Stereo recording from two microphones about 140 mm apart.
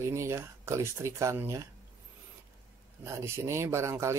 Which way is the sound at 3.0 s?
20° right (ahead or behind).